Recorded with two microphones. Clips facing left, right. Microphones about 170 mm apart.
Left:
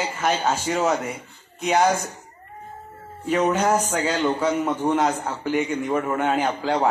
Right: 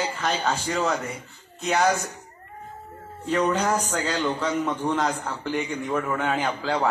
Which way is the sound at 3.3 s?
10° left (ahead or behind).